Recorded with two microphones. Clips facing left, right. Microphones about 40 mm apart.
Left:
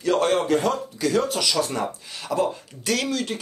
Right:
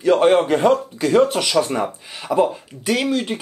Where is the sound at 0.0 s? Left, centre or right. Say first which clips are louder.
Right 6 dB; right.